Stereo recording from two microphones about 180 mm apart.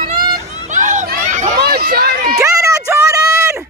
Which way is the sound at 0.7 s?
45° right (ahead or behind).